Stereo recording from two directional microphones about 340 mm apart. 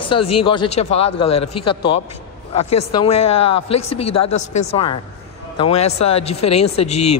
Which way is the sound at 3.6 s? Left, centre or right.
Left.